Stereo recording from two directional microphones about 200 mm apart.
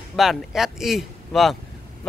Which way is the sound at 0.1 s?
Centre (ahead or behind).